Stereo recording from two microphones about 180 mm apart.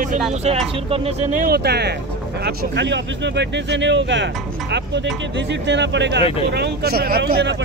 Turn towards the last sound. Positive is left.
turn(degrees=-65)  # may be behind; listen again after turning